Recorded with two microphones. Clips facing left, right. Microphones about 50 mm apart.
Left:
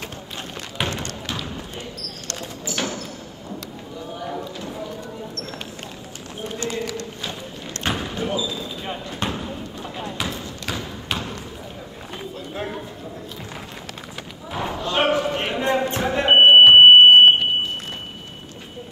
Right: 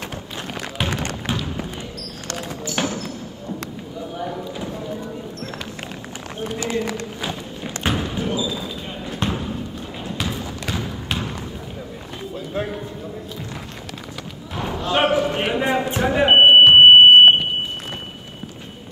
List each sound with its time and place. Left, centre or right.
0.8 s music: centre
2.6 s basketball bounce: centre
6.4 s run: centre
7.8 s basketball bounce: centre
8.4 s basketball bounce: centre
9.2 s a sound: centre
9.9 s basketball bounce: centre
10.7 s a sound: centre
12.4 s a sound: centre
14.5 s basketball bounce: centre